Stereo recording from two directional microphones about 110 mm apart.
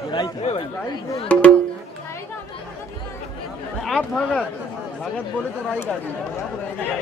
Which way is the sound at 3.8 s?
5° left (ahead or behind).